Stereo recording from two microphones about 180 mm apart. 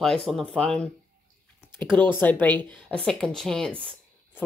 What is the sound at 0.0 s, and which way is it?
A woman's voice, 5° left (ahead or behind).